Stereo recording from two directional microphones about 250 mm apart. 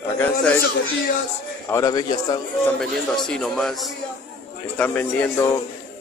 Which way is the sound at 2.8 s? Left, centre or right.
Centre.